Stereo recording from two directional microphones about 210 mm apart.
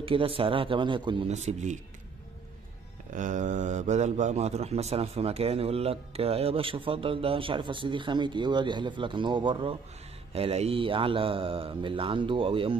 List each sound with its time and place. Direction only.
0.0 s a man's voice: 25° right (ahead or behind)
3.2 s a man's voice: 35° right (ahead or behind)